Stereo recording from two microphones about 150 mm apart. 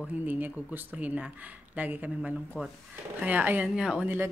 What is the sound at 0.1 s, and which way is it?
Speech, 10° right (ahead or behind).